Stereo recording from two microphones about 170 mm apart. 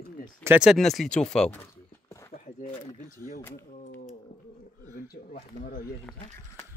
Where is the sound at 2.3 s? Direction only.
45° left (ahead or behind).